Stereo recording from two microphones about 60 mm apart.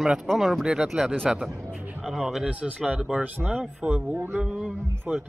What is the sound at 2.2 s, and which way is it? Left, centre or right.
Speech, centre.